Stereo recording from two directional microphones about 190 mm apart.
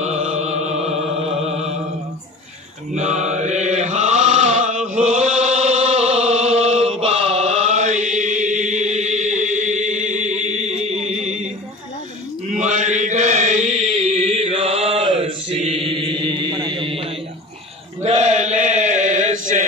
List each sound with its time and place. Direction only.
0.0 s music: 35° right (ahead or behind)
2.9 s mantra: 35° right (ahead or behind)
12.4 s chant: 40° right (ahead or behind)